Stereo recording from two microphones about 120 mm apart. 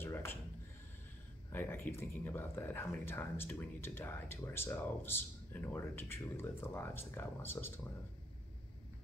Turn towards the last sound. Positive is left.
turn(degrees=20)  # may be behind; listen again after turning